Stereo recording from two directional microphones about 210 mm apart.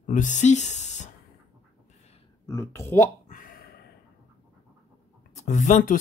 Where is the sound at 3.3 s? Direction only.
40° left (ahead or behind).